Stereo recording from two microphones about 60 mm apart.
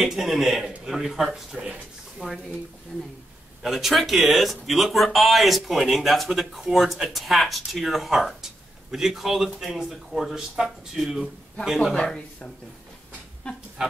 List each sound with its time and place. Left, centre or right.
0.0 s speech: centre
3.6 s speech: centre
11.9 s speech: centre
13.4 s a sound: centre